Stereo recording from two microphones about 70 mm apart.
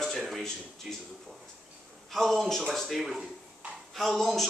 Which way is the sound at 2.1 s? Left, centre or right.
Centre.